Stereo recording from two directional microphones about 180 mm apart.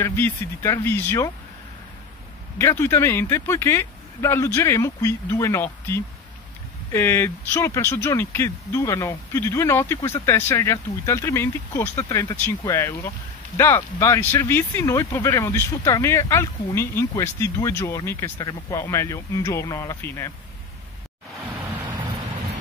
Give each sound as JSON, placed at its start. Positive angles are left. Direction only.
{"t": 0.0, "sound": "speech", "side_deg": 15}
{"t": 2.6, "sound": "speech", "side_deg": 15}